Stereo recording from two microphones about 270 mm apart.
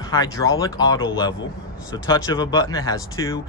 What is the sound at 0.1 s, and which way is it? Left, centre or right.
Speech, centre.